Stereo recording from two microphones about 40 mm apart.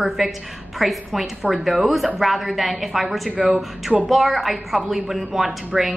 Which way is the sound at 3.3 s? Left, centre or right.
Centre.